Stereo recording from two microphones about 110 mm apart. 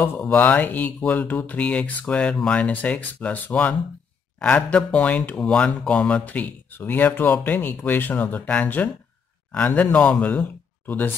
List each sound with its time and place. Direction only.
0.2 s speech: 10° left (ahead or behind)